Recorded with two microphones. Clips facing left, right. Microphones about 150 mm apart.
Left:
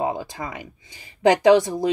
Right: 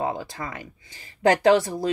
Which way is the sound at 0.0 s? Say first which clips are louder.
Left 2 dB; 20° left (ahead or behind).